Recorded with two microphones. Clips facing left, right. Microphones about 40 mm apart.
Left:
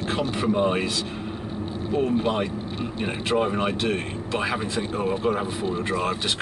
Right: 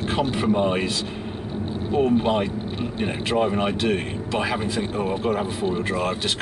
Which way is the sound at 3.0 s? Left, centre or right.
Centre.